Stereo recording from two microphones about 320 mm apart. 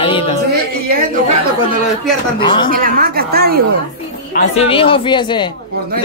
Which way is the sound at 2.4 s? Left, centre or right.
Centre.